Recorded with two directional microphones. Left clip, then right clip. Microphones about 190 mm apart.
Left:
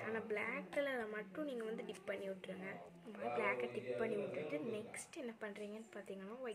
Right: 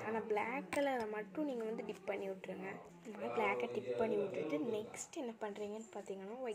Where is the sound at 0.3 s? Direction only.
15° right (ahead or behind).